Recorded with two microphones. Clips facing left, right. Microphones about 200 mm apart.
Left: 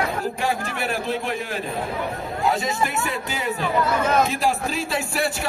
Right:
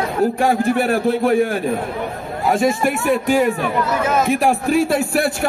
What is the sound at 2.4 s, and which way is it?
Speech, 50° right (ahead or behind).